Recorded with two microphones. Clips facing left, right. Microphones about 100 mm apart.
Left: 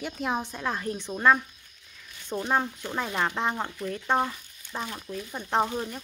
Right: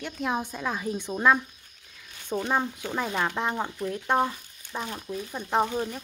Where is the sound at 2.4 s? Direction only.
Centre (ahead or behind); by 5.3 s 20° right (ahead or behind).